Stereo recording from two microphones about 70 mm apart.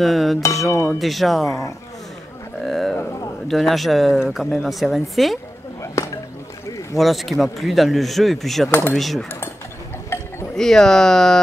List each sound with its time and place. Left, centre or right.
0.0 s speech: centre
0.7 s speech: left
0.9 s speech: centre
2.6 s speech: centre
7.0 s speech: centre
8.6 s speech: left
8.9 s speech: centre
10.5 s speech: centre